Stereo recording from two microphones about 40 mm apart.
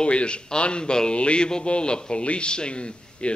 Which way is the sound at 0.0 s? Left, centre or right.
Left.